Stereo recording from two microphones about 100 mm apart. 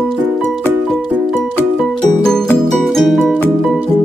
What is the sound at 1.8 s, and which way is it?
Music, 5° left (ahead or behind).